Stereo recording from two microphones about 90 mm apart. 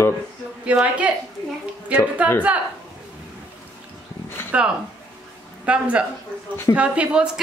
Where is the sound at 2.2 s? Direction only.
15° right (ahead or behind).